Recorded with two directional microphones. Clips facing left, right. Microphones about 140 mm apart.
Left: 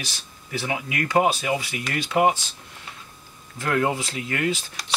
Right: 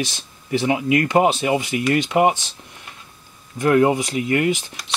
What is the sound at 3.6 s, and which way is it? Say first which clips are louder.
Speech: right 8 dB; 20° right (ahead or behind).